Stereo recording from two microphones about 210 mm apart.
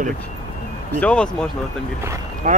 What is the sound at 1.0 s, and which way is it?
Speech, 5° left (ahead or behind).